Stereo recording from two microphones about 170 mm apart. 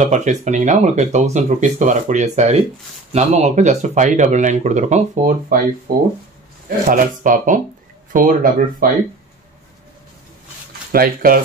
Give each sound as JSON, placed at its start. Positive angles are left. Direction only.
{"t": 0.0, "sound": "speech", "side_deg": -45}
{"t": 5.9, "sound": "speech", "side_deg": -60}
{"t": 10.9, "sound": "speech", "side_deg": -60}